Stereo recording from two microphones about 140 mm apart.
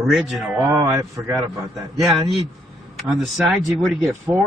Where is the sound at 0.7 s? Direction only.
25° right (ahead or behind).